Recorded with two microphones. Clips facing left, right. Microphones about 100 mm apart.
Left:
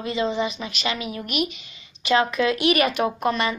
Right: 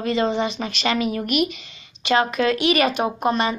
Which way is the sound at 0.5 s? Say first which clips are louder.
Right 5 dB; 50° right (ahead or behind).